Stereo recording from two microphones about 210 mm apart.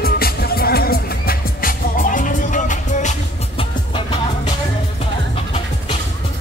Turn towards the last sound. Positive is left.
turn(degrees=25)  # may be behind; listen again after turning